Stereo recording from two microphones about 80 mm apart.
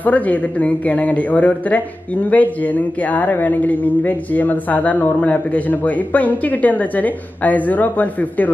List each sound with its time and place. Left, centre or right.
0.0 s speech: left